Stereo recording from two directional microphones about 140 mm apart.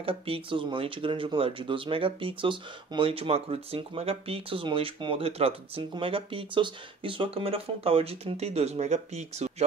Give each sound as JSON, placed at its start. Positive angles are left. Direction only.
{"t": 0.0, "sound": "speech", "side_deg": -40}